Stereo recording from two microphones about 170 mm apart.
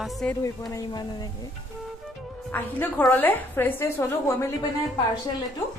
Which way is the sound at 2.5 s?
10° left (ahead or behind).